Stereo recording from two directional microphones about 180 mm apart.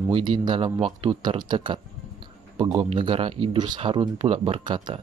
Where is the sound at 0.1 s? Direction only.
25° right (ahead or behind).